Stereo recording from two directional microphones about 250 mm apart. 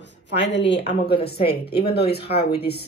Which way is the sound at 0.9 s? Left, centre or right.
Left.